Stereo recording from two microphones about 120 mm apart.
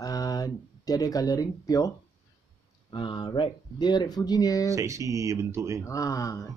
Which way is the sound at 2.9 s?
40° left (ahead or behind).